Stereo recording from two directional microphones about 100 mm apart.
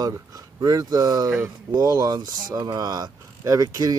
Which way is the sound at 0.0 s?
35° right (ahead or behind).